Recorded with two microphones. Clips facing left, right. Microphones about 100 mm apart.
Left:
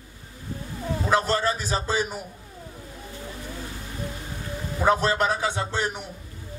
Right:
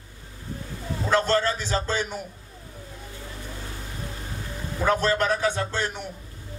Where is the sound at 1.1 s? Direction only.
15° left (ahead or behind).